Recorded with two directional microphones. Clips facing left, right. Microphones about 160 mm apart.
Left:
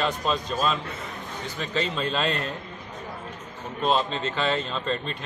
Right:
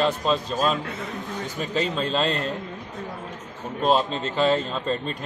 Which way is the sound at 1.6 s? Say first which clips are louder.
Right 2 dB; 40° right (ahead or behind).